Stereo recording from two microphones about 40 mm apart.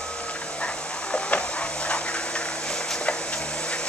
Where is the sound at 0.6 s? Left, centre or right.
Left.